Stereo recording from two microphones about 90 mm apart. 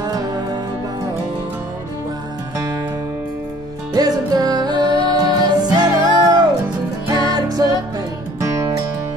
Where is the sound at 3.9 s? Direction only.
45° right (ahead or behind).